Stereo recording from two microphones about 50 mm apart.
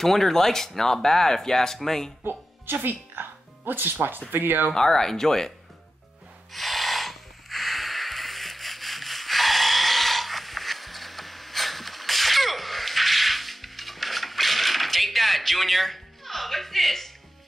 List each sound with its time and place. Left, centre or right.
0.0 s speech: centre
2.2 s music: right
4.3 s speech: right
4.7 s speech: centre
6.5 s snort: centre